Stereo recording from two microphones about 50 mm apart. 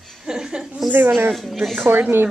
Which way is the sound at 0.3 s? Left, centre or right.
Centre.